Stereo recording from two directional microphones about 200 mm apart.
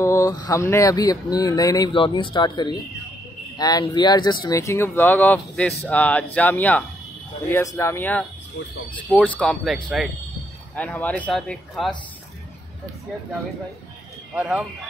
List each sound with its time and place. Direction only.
0.0 s speech: 15° left (ahead or behind)
14.3 s speech: 5° right (ahead or behind)